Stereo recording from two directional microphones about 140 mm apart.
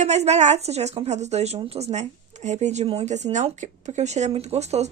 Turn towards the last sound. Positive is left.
turn(degrees=-50)  # may be behind; listen again after turning